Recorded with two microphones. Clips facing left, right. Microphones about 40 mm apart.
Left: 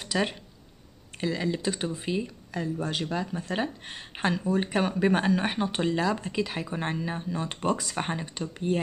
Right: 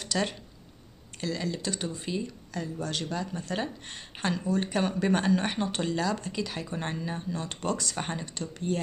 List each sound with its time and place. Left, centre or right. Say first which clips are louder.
0.0 s speech: left 2 dB; centre